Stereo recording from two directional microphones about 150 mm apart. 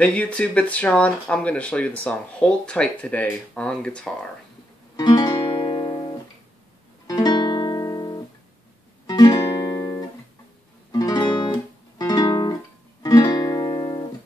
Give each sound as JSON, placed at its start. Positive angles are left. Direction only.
{"t": 0.0, "sound": "speech", "side_deg": 5}
{"t": 4.9, "sound": "music", "side_deg": 25}
{"t": 7.1, "sound": "guitar", "side_deg": 25}
{"t": 9.0, "sound": "music", "side_deg": 30}
{"t": 12.0, "sound": "guitar", "side_deg": 25}
{"t": 13.0, "sound": "music", "side_deg": 25}